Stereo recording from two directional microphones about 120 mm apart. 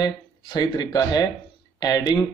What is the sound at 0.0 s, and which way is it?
Speech, 35° left (ahead or behind).